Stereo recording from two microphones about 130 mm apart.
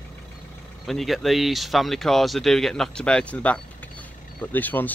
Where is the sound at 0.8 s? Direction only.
Centre (ahead or behind).